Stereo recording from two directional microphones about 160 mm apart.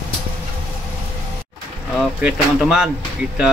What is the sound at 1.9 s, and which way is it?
Speech, 5° right (ahead or behind).